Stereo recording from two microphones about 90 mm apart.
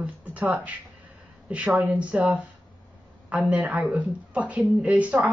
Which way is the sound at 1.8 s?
15° right (ahead or behind).